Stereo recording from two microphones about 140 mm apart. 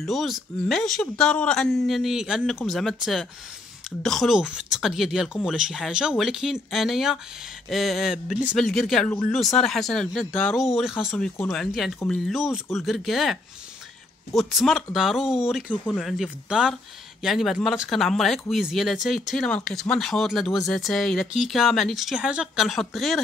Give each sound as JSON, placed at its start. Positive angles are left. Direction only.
{"t": 0.0, "sound": "speech", "side_deg": 0}
{"t": 15.7, "sound": "speech", "side_deg": 10}
{"t": 16.0, "sound": "speech", "side_deg": 0}